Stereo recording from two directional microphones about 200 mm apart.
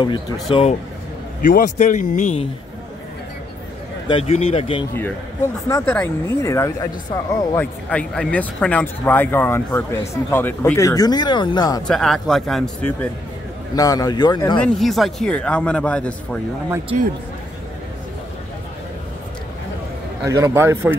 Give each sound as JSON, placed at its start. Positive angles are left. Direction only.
{"t": 0.0, "sound": "speech", "side_deg": 25}
{"t": 1.4, "sound": "a man's voice", "side_deg": 40}
{"t": 4.1, "sound": "speech", "side_deg": 30}
{"t": 5.7, "sound": "speech", "side_deg": 10}
{"t": 7.9, "sound": "speech", "side_deg": 5}
{"t": 11.9, "sound": "a man's voice", "side_deg": 0}
{"t": 13.7, "sound": "speech", "side_deg": 15}
{"t": 14.6, "sound": "a man's voice", "side_deg": 0}
{"t": 20.2, "sound": "a man's voice", "side_deg": -15}